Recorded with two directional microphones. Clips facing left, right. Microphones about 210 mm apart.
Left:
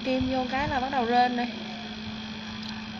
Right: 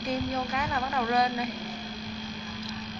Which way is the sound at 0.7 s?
25° left (ahead or behind).